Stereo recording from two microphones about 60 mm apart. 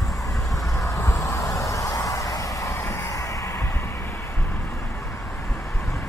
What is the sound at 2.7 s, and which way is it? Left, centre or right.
Music, left.